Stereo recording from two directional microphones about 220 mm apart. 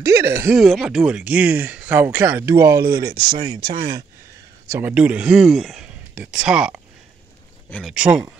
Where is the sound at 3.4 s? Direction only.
20° right (ahead or behind).